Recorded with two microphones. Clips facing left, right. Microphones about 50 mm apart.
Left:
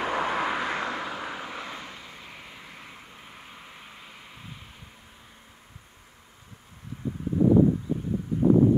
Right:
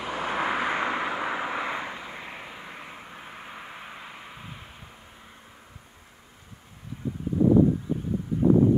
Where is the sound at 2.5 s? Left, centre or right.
Right.